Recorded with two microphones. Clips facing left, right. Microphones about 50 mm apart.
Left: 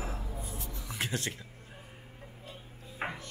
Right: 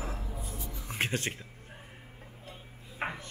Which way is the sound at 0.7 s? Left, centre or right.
Right.